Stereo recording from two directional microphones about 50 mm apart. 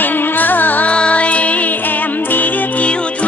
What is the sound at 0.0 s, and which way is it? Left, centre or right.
Music, left.